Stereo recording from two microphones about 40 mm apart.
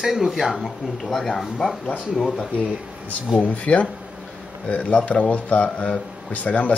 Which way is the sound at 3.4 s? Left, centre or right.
Left.